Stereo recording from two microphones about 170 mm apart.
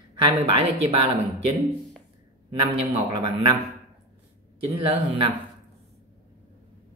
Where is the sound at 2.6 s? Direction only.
30° right (ahead or behind).